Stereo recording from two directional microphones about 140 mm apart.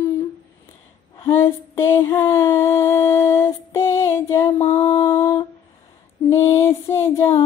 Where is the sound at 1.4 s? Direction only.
20° left (ahead or behind).